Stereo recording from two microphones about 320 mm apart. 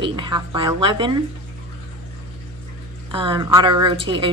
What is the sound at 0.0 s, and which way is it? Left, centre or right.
A woman's voice, centre.